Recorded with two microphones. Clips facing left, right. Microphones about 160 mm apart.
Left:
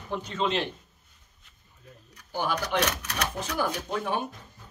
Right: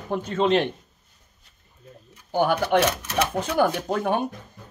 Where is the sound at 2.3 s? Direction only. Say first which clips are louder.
Right 7 dB; 55° right (ahead or behind).